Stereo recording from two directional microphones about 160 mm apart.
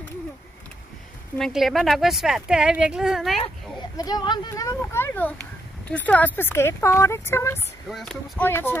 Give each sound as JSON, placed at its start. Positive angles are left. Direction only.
{"t": 1.4, "sound": "a woman's voice", "side_deg": 0}
{"t": 3.9, "sound": "speech", "side_deg": 25}
{"t": 7.9, "sound": "a woman's voice", "side_deg": 0}
{"t": 8.4, "sound": "speech", "side_deg": 15}